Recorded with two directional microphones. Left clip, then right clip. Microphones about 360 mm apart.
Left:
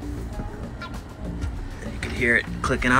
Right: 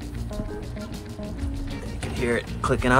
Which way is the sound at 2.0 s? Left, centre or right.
Centre.